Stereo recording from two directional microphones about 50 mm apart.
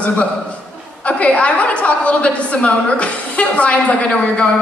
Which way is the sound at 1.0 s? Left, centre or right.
Left.